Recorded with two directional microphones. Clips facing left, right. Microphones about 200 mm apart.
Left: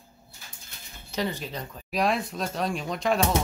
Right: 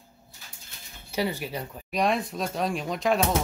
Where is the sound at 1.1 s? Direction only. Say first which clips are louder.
Right 2 dB; 10° right (ahead or behind).